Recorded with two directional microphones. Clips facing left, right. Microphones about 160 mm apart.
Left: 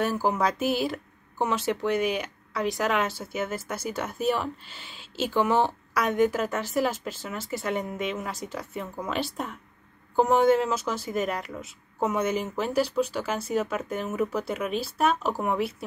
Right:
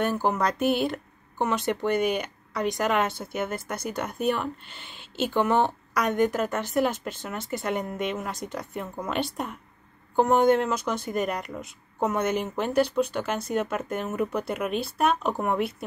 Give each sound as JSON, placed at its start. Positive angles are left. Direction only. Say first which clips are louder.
{"t": 0.0, "sound": "speech", "louder": "even", "side_deg": 5}
{"t": 0.6, "sound": "speech", "louder": "right 2 dB", "side_deg": -55}
{"t": 0.8, "sound": "speech", "louder": "right 1 dB", "side_deg": 5}
{"t": 4.9, "sound": "a sound", "louder": "right 1 dB", "side_deg": -55}
{"t": 5.3, "sound": "speech", "louder": "even", "side_deg": 5}